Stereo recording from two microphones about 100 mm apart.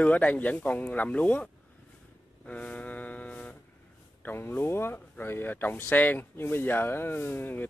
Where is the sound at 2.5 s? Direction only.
15° left (ahead or behind).